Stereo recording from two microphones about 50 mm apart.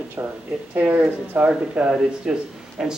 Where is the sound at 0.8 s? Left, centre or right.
Right.